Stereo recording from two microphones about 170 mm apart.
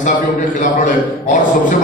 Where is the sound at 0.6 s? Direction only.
50° left (ahead or behind).